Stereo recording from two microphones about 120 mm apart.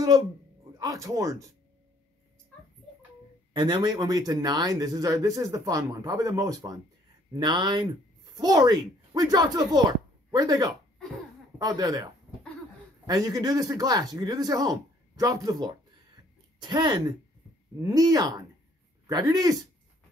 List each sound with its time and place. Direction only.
0.7 s speech: 30° right (ahead or behind)
3.5 s speech: 40° right (ahead or behind)